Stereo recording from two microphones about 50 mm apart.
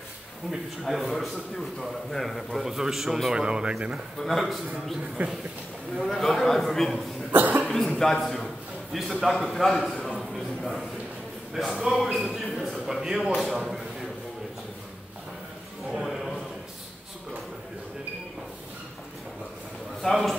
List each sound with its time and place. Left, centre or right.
0.5 s a man's voice: centre
4.2 s a man's voice: centre
5.2 s speech: right
6.0 s a man's voice: centre
7.3 s cough: right
8.0 s a man's voice: centre
11.6 s a man's voice: centre
12.5 s a sound: centre
13.4 s a man's voice: centre
15.9 s a sound: centre
20.0 s a man's voice: centre